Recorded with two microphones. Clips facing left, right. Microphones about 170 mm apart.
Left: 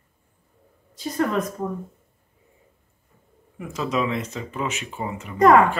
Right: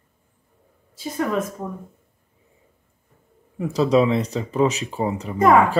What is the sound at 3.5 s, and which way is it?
Speech, 35° right (ahead or behind).